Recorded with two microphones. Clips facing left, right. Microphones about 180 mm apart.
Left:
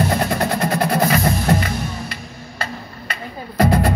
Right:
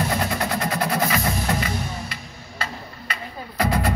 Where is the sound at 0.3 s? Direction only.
55° left (ahead or behind).